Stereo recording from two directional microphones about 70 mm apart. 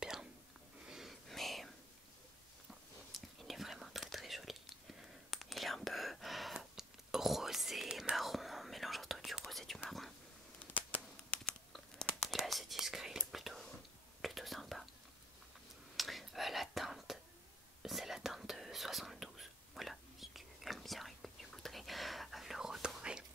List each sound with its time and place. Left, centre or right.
0.0 s whispering: centre
0.8 s wheeze: centre
1.3 s whispering: centre
2.7 s whispering: centre
10.7 s a sound: left
11.7 s whispering: centre
16.0 s whispering: centre